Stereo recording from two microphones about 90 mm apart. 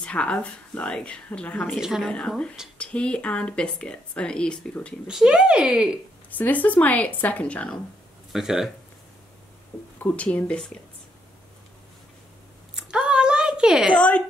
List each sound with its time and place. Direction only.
0.0 s speech: 15° left (ahead or behind)
1.7 s a woman's voice: centre (ahead or behind)
2.1 s speech: 10° left (ahead or behind)
5.0 s speech: 5° right (ahead or behind)
6.3 s speech: 20° left (ahead or behind)
8.3 s speech: 5° right (ahead or behind)
9.9 s speech: 15° left (ahead or behind)
12.7 s a sound: 10° right (ahead or behind)
13.9 s speech: 15° left (ahead or behind)